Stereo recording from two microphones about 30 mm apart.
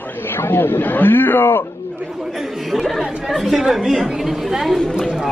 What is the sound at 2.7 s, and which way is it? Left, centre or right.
A woman's voice, centre.